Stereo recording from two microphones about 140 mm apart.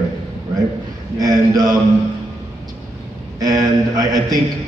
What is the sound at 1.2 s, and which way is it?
Speech, 25° right (ahead or behind).